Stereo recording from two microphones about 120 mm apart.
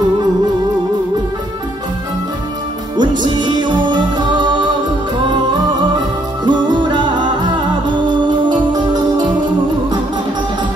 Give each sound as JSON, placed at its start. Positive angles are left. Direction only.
{"t": 3.0, "sound": "music", "side_deg": -40}
{"t": 6.4, "sound": "music", "side_deg": -40}